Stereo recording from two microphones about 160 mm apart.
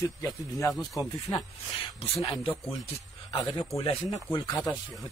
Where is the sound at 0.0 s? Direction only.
20° left (ahead or behind).